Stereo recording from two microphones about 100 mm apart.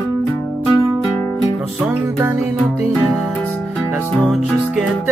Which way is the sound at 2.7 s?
10° right (ahead or behind).